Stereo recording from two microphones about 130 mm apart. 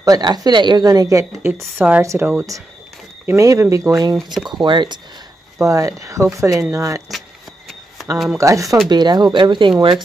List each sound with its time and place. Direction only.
0.0 s speech: 30° right (ahead or behind)
5.6 s speech: 25° right (ahead or behind)
7.1 s a sound: centre (ahead or behind)
8.4 s speech: 25° right (ahead or behind)